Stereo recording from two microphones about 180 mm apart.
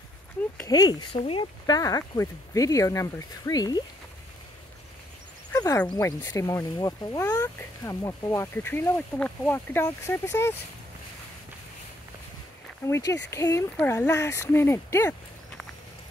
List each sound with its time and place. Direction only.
0.7 s speech: 20° left (ahead or behind)
1.8 s speech: 20° left (ahead or behind)
5.5 s a sound: 20° left (ahead or behind)
5.8 s speech: 10° left (ahead or behind)
12.8 s speech: 15° left (ahead or behind)